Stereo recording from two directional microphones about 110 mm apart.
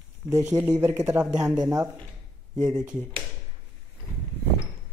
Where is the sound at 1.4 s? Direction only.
35° right (ahead or behind).